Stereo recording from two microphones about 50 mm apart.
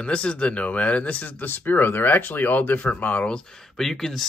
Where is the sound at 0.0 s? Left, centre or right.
Left.